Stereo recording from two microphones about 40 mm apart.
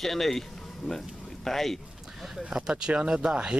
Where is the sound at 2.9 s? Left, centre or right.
Right.